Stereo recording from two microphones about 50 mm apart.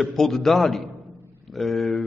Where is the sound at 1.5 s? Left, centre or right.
Centre.